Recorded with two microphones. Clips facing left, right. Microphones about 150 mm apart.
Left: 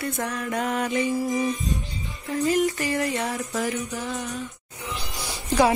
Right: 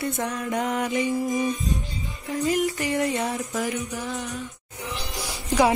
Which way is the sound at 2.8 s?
20° right (ahead or behind).